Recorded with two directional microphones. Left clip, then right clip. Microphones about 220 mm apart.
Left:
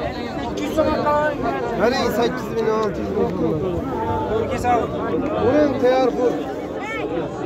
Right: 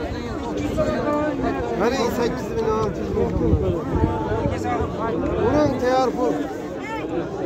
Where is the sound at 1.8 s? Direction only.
Centre (ahead or behind).